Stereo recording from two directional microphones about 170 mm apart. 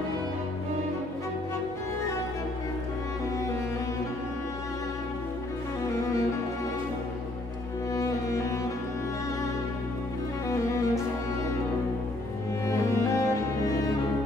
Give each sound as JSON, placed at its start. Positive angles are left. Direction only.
{"t": 7.9, "sound": "music", "side_deg": 20}
{"t": 10.5, "sound": "music", "side_deg": 20}
{"t": 12.6, "sound": "music", "side_deg": 15}